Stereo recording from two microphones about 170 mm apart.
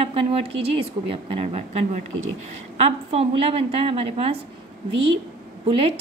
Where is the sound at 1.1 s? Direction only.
35° right (ahead or behind).